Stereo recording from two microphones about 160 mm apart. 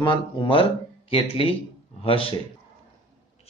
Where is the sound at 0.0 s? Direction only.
30° left (ahead or behind).